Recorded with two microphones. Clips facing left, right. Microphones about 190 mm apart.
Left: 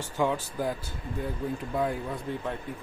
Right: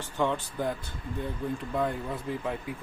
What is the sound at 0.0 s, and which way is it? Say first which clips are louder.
Speech: left 1 dB; 5° left (ahead or behind).